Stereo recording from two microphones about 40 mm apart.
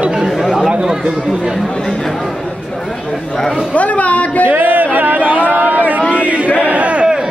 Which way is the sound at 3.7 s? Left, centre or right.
Left.